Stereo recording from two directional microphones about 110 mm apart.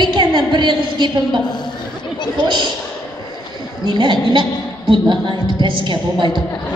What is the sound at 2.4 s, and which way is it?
Speech, 45° right (ahead or behind).